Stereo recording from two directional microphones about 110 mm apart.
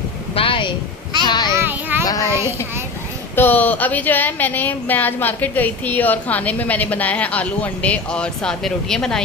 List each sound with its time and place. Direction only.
0.3 s a sound: 55° left (ahead or behind)
1.5 s music: 20° right (ahead or behind)
2.0 s child singing: 30° left (ahead or behind)
3.3 s speech: 15° left (ahead or behind)